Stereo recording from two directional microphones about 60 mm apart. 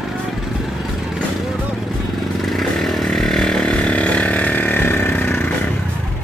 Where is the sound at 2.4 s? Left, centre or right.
Centre; by 5.4 s left.